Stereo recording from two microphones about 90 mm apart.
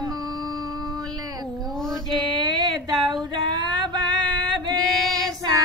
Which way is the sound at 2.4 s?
50° right (ahead or behind).